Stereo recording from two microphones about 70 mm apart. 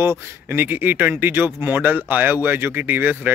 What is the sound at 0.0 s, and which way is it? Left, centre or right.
A man's voice, right.